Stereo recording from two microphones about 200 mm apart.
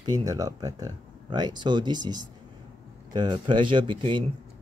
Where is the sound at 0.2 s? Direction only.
20° right (ahead or behind).